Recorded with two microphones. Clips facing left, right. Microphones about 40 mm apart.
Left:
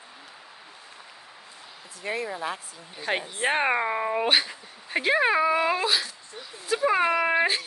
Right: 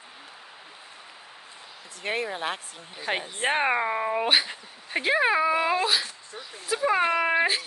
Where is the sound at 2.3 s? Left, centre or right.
Right.